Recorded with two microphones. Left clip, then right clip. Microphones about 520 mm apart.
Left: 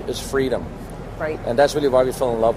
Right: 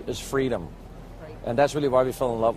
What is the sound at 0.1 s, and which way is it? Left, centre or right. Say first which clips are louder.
Speech: left 5 dB; right.